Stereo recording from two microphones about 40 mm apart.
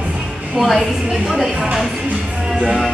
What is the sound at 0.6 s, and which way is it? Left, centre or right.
Speech, centre.